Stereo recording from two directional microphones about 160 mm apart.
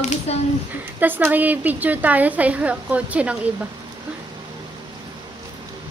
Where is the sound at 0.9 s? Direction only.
10° right (ahead or behind).